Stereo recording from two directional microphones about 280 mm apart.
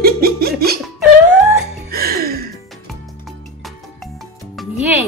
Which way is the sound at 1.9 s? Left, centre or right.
Right.